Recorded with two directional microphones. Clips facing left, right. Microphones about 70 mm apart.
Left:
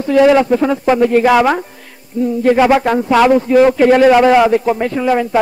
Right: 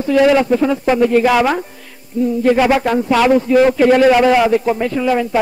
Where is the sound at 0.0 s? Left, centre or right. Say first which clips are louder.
Left 2 dB; left.